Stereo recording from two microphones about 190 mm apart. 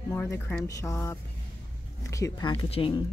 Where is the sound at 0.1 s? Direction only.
10° left (ahead or behind).